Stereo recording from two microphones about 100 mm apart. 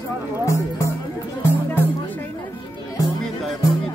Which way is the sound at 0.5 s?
30° left (ahead or behind).